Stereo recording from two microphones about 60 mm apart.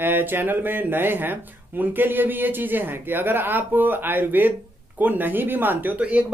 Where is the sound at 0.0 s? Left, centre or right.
Right.